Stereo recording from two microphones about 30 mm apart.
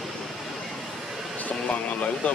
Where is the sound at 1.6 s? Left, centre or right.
Left.